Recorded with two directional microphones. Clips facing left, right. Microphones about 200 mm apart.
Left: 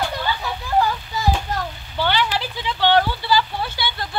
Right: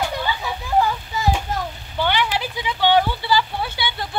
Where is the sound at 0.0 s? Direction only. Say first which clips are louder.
Even; 10° right (ahead or behind).